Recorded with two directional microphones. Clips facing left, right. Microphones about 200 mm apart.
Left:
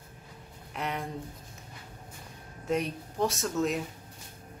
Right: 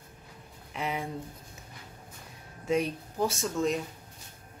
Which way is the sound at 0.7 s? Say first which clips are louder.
Right 1 dB; centre (ahead or behind).